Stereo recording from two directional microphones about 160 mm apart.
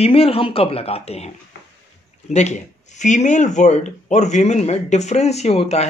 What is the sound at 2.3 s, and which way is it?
Speech, 45° left (ahead or behind).